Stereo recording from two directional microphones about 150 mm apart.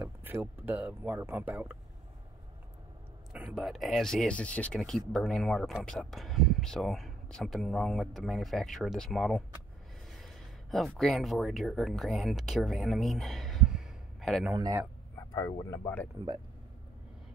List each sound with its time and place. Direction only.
0.0 s speech: 15° right (ahead or behind)
3.3 s speech: 5° right (ahead or behind)
10.0 s a sound: centre (ahead or behind)
11.0 s speech: centre (ahead or behind)
14.5 s speech: 20° right (ahead or behind)
15.7 s speech: 15° left (ahead or behind)